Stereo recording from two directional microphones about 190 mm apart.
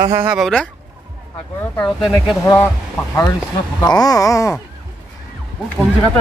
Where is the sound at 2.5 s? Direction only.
15° left (ahead or behind).